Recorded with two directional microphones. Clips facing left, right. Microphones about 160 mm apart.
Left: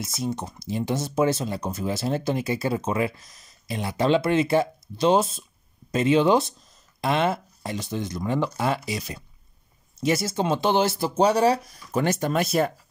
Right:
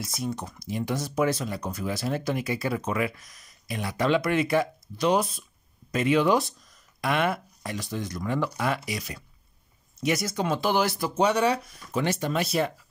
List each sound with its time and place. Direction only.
0.2 s speech: 25° left (ahead or behind); by 12.7 s 45° left (ahead or behind)